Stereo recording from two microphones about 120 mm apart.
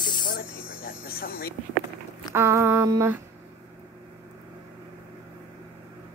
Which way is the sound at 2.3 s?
20° right (ahead or behind).